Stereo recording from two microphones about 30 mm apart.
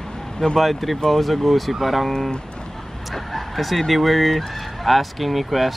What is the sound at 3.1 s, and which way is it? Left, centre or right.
Fowl, centre.